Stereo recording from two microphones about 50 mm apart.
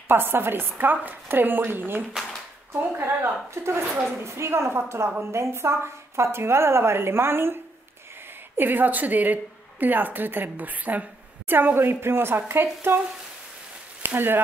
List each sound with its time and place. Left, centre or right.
0.1 s speech: right
2.7 s a woman's voice: right
8.5 s a woman's voice: right
14.0 s speech: right